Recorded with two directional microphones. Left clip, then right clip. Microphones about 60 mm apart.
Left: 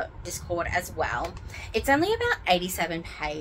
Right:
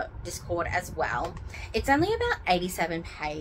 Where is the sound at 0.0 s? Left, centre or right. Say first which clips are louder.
Left 1 dB; left.